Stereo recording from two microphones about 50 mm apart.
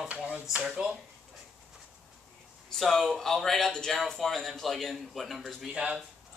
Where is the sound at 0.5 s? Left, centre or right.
Centre.